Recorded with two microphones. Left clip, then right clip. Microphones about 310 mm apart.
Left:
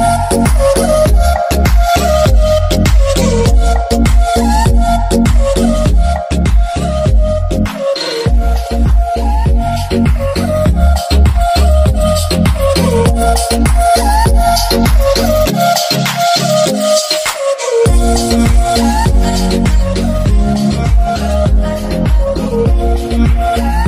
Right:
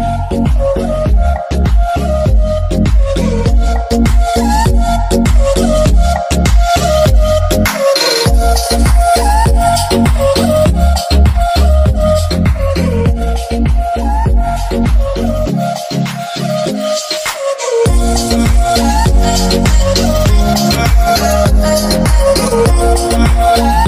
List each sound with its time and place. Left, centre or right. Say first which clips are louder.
0.0 s music: left 5 dB; left
0.7 s music: left 6 dB; left
2.0 s music: left 5 dB; left; by 3.4 s centre
3.9 s music: right 2 dB; centre
6.7 s music: right 7 dB; right
7.5 s music: right 5 dB; right
9.1 s music: right 6 dB; right; by 10.7 s centre
11.4 s music: left 2 dB; centre
12.7 s music: left 4 dB; left
14.2 s music: left 6 dB; left; by 20.7 s right
21.1 s music: right 4 dB; right
22.6 s music: right 4 dB; right